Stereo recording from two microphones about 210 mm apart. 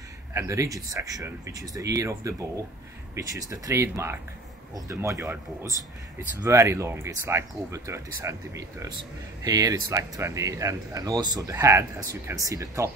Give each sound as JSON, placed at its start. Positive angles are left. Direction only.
{"t": 0.3, "sound": "speech", "side_deg": -15}